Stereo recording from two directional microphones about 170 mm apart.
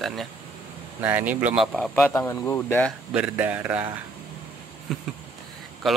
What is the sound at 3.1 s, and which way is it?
Speech, 10° right (ahead or behind).